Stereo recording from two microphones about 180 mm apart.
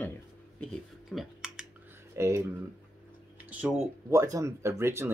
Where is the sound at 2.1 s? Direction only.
15° right (ahead or behind).